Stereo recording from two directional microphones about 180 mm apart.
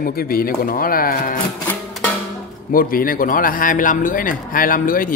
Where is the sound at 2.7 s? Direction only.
55° left (ahead or behind).